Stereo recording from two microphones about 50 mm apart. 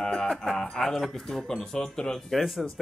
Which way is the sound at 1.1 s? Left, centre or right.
Centre.